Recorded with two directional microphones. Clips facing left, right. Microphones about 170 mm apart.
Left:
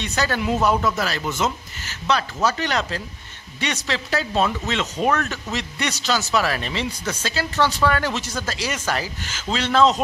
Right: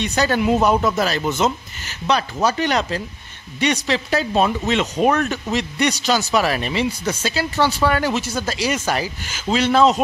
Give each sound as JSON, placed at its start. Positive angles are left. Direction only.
{"t": 0.0, "sound": "speech", "side_deg": -15}